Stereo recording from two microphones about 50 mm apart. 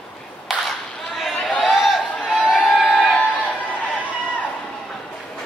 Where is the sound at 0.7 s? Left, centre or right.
Centre.